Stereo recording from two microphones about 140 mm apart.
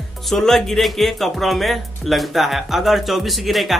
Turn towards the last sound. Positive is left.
turn(degrees=0)  # may be behind; listen again after turning